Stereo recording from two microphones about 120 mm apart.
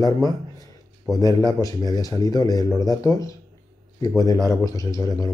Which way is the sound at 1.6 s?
30° left (ahead or behind).